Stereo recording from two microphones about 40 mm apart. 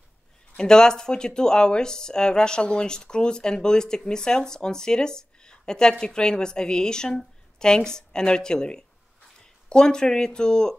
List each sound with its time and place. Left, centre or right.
0.6 s speech: centre